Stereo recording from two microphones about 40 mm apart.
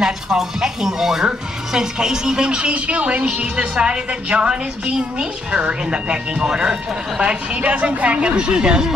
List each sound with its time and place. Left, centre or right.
0.0 s speech: centre
2.9 s a woman's voice: right
7.2 s a woman's voice: right
8.4 s a woman's voice: right